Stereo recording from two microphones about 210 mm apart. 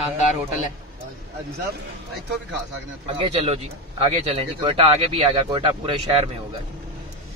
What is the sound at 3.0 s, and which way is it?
A man's voice, 30° right (ahead or behind).